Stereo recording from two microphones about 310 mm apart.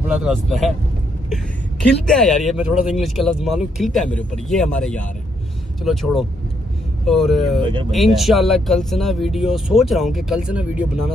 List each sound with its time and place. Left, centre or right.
0.0 s speech: centre
2.0 s speech: centre
7.6 s speech: centre
7.9 s speech: centre